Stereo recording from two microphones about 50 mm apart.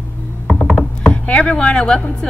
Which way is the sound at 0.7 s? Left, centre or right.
Left.